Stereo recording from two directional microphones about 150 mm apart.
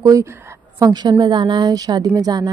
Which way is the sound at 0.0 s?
20° right (ahead or behind).